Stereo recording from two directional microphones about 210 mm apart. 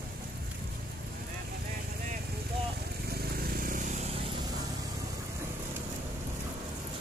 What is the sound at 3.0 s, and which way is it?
Vehicle, 45° right (ahead or behind).